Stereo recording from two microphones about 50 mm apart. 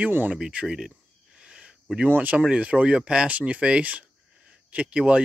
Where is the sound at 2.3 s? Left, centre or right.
Right.